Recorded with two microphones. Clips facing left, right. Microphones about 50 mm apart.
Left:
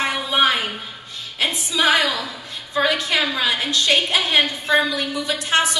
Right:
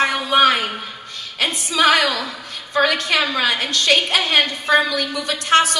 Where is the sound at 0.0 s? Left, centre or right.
Right.